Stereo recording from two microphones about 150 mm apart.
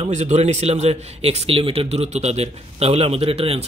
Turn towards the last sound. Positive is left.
turn(degrees=-40)  # may be behind; listen again after turning